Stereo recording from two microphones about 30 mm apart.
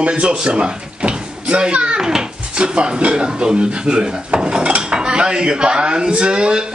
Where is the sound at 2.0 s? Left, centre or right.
Right.